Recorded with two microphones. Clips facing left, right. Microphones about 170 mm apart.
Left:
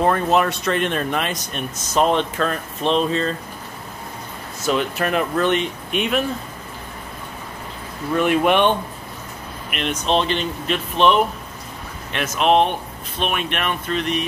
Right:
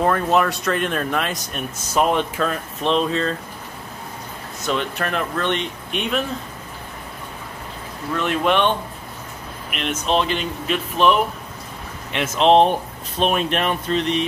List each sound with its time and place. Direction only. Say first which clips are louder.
0.0 s speech: left 1 dB; 5° left (ahead or behind)
4.6 s speech: left 3 dB; 5° left (ahead or behind)
8.1 s speech: left 3 dB; 10° left (ahead or behind)
9.7 s speech: left 1 dB; centre (ahead or behind)
12.1 s speech: right 2 dB; 25° right (ahead or behind)